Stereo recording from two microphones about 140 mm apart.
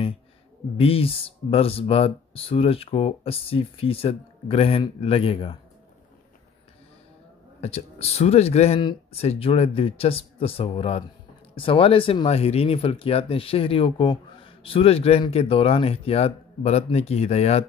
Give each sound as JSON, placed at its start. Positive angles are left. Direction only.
{"t": 0.7, "sound": "speech", "side_deg": 45}
{"t": 7.6, "sound": "speech", "side_deg": 50}